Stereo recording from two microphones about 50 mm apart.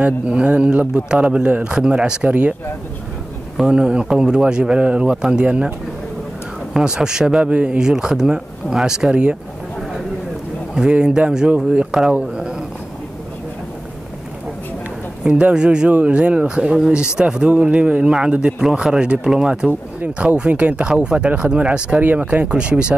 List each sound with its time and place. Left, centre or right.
0.0 s a man's voice: right
3.7 s a man's voice: centre
5.1 s a man's voice: centre
6.8 s speech: centre
10.9 s a man's voice: centre
15.5 s a man's voice: centre